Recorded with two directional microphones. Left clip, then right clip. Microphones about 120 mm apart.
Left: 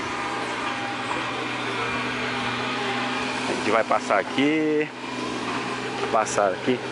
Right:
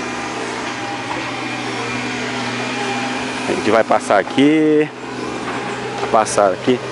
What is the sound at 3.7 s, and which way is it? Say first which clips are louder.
Speech: right 8 dB; 35° right (ahead or behind).